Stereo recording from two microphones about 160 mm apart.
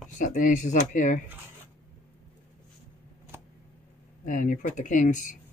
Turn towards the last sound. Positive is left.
turn(degrees=50)  # may be behind; listen again after turning